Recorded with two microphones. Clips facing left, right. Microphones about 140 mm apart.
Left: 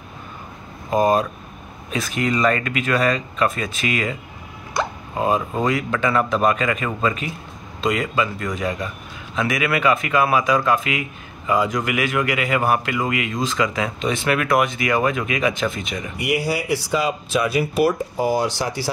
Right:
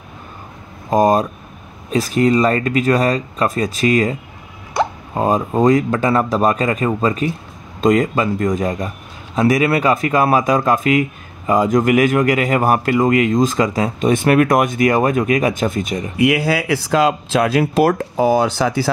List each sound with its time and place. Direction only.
0.8 s a man's voice: 40° right (ahead or behind)
16.3 s speech: 90° right